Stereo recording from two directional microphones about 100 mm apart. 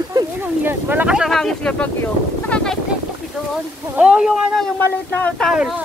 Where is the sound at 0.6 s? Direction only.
20° right (ahead or behind).